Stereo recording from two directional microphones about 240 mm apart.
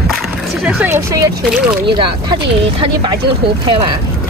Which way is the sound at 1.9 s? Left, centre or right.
Centre.